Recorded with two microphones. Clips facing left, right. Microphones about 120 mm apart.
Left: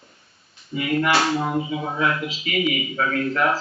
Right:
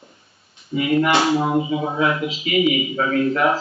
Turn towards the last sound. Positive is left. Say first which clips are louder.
# right 4 dB
turn(degrees=-5)  # may be behind; listen again after turning